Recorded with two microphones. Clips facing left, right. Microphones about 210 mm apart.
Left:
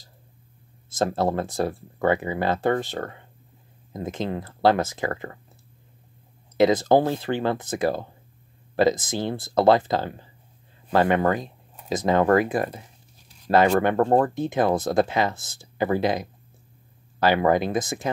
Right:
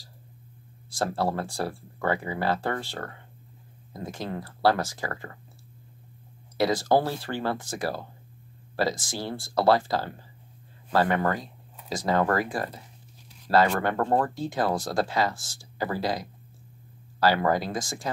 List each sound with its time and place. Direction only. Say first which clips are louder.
0.8 s speech: left 4 dB; 20° left (ahead or behind)
6.5 s speech: left 5 dB; 20° left (ahead or behind)